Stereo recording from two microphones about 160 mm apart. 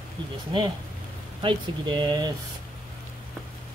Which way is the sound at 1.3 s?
30° right (ahead or behind).